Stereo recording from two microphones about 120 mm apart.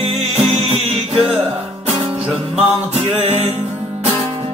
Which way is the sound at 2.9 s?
65° right (ahead or behind).